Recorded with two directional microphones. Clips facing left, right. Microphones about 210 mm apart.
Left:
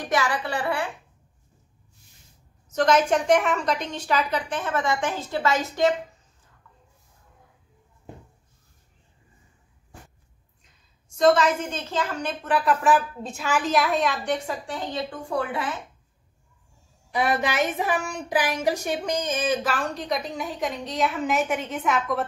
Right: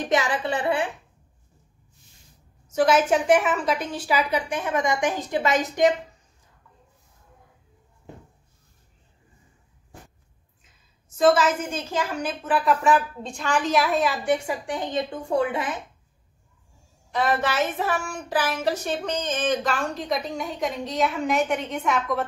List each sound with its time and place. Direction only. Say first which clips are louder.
0.0 s a woman's voice: right 2 dB; 20° right (ahead or behind)
2.7 s a woman's voice: right 1 dB; 5° right (ahead or behind)
10.6 s a woman's voice: right 1 dB; 5° right (ahead or behind); by 15.8 s 20° right (ahead or behind)
17.1 s a woman's voice: even; 15° left (ahead or behind)